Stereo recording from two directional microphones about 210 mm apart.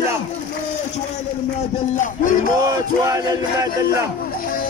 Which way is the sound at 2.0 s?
40° left (ahead or behind).